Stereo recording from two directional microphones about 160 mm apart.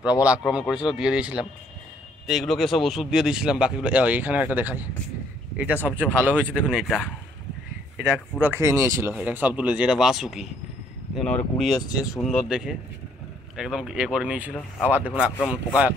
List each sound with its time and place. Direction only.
0.5 s speech: 5° right (ahead or behind)
5.9 s speech: 10° right (ahead or behind)
8.0 s speech: 15° right (ahead or behind)